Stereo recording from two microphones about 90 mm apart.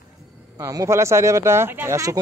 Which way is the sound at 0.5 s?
40° right (ahead or behind).